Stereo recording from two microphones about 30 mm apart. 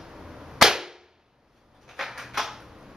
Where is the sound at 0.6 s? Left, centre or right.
Centre.